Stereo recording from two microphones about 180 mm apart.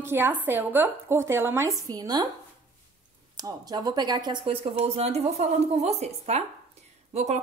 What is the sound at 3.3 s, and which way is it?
A woman's voice, 20° right (ahead or behind).